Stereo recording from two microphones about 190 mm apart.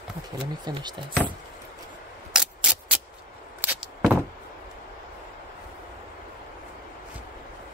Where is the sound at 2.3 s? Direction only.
5° right (ahead or behind).